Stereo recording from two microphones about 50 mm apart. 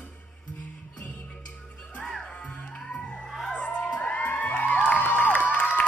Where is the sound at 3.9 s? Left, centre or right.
Left.